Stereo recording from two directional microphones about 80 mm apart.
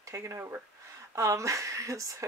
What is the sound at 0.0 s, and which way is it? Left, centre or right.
Speech, right.